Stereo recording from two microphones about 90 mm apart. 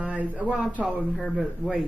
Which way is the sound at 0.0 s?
15° right (ahead or behind).